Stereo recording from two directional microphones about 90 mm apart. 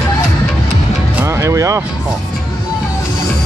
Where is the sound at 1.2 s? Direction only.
30° right (ahead or behind).